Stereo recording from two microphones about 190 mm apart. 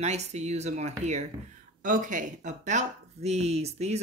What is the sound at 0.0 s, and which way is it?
Speech, 35° right (ahead or behind).